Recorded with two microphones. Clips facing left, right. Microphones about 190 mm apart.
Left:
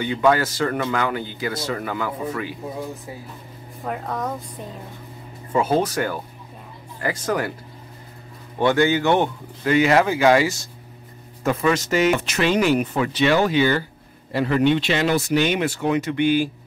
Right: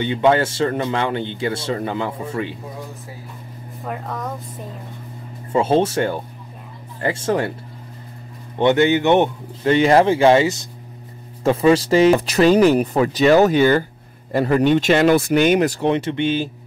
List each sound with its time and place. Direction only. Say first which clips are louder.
0.0 s speech: right 2 dB; 25° right (ahead or behind)
3.8 s speech: left 1 dB; centre (ahead or behind)
5.5 s speech: right 3 dB; 25° right (ahead or behind)
8.5 s speech: right 3 dB; 20° right (ahead or behind)